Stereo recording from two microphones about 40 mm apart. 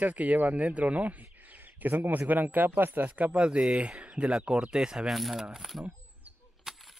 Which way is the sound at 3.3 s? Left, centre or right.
Right.